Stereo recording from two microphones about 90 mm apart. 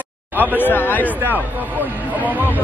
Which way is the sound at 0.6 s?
20° left (ahead or behind).